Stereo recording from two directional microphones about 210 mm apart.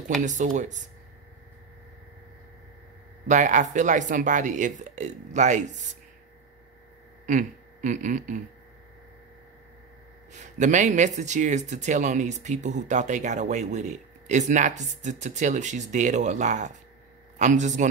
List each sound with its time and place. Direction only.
0.2 s speech: 35° right (ahead or behind)
3.3 s speech: 35° right (ahead or behind)
7.2 s a sound: 35° right (ahead or behind)
10.3 s speech: 35° right (ahead or behind)